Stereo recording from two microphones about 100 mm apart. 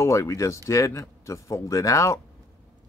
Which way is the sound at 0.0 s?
30° left (ahead or behind).